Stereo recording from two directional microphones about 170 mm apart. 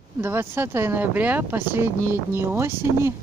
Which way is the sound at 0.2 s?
15° right (ahead or behind).